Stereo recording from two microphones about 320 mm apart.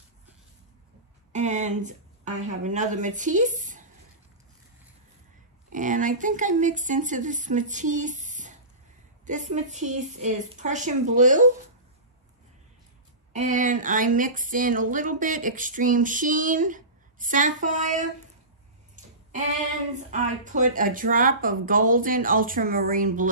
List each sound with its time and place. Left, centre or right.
1.3 s speech: right
5.7 s a woman's voice: right
13.3 s a woman's voice: right
20.0 s a woman's voice: right